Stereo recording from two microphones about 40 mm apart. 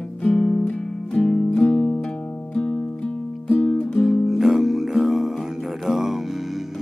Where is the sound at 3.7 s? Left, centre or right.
Centre.